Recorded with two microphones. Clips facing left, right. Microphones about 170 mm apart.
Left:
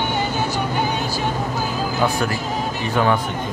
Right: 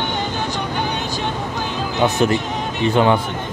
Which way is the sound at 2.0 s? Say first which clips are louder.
Right 6 dB; 20° right (ahead or behind).